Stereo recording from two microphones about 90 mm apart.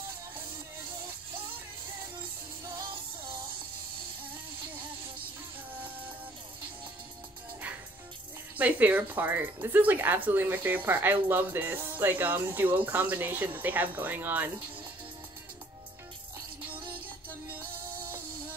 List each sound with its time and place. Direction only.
8.5 s speech: 20° right (ahead or behind)
16.9 s music: 20° right (ahead or behind)